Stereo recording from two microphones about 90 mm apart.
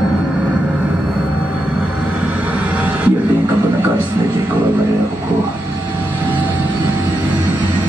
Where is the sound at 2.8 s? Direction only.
15° right (ahead or behind).